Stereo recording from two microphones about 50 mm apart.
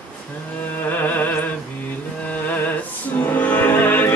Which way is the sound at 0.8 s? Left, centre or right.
Left.